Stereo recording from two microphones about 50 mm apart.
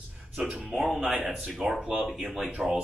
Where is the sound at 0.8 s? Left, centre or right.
Centre.